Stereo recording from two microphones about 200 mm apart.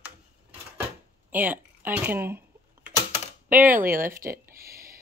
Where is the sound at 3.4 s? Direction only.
10° right (ahead or behind).